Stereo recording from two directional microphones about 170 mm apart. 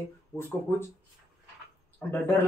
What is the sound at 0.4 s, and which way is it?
Speech, 15° left (ahead or behind).